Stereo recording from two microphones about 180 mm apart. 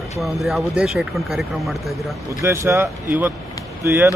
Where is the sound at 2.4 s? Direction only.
15° right (ahead or behind).